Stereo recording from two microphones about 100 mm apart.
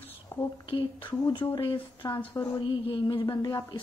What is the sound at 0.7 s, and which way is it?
Speech, 50° left (ahead or behind).